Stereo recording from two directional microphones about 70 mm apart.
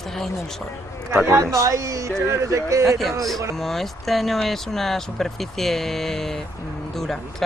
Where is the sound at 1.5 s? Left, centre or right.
Right.